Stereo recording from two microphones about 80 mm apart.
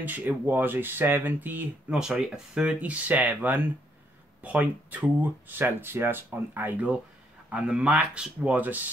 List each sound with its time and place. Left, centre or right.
0.0 s speech: right
1.9 s speech: centre